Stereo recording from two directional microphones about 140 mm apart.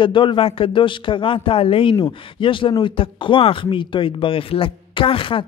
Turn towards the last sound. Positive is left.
turn(degrees=40)  # may be behind; listen again after turning